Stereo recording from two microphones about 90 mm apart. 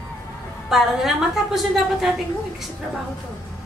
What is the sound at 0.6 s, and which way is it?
A woman's voice, 5° right (ahead or behind).